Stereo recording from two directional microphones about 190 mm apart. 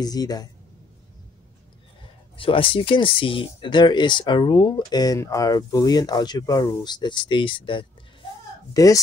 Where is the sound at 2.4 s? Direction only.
30° left (ahead or behind).